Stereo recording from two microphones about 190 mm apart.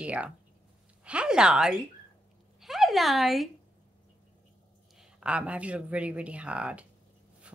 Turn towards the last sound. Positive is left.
turn(degrees=-5)  # may be behind; listen again after turning